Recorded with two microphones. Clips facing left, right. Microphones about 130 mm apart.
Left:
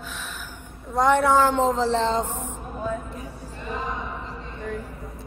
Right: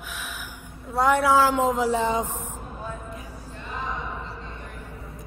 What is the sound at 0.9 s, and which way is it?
A man's voice, 5° right (ahead or behind).